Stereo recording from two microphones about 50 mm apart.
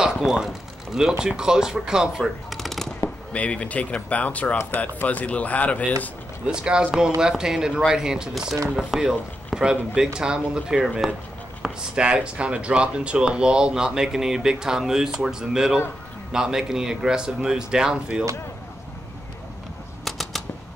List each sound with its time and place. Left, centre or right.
0.0 s a sound: centre
1.2 s speech: centre
2.5 s machine gun: centre
3.3 s speech: left
6.4 s speech: centre
11.9 s speech: centre
20.1 s a sound: centre